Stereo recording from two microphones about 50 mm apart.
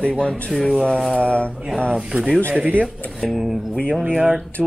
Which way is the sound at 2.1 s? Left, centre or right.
Right.